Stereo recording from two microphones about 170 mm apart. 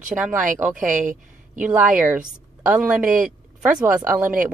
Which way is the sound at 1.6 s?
10° right (ahead or behind).